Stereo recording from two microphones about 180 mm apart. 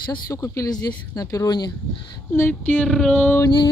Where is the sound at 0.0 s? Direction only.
20° left (ahead or behind).